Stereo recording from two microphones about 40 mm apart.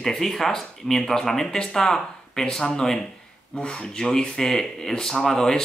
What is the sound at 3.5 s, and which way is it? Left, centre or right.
Speech, left.